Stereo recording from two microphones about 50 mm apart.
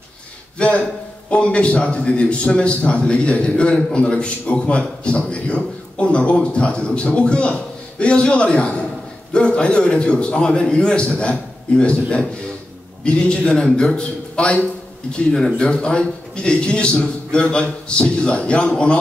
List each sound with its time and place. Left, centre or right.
0.6 s a man's voice: centre